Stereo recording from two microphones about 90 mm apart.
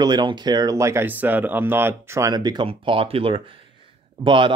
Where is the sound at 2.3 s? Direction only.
50° right (ahead or behind).